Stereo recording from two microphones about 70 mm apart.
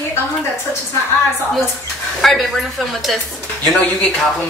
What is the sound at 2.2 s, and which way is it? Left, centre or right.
Speech, centre.